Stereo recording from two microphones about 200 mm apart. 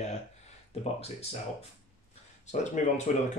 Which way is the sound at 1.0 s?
30° left (ahead or behind).